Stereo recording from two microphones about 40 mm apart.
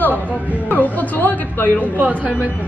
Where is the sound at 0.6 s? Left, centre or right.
Left.